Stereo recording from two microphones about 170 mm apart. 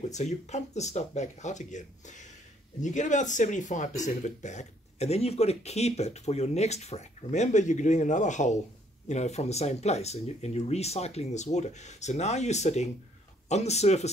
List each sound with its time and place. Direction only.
0.0 s speech: 40° left (ahead or behind)